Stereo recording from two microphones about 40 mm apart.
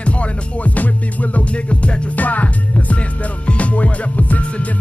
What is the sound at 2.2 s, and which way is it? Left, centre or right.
Music, left.